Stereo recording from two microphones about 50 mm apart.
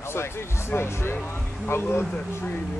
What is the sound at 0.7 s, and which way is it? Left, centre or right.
Speech, left.